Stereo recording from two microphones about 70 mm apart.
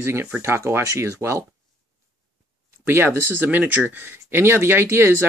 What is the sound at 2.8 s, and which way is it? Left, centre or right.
Speech, right.